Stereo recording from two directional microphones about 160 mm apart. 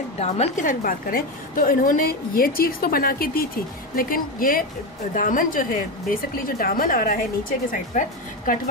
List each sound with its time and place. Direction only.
0.2 s a woman's voice: 45° left (ahead or behind)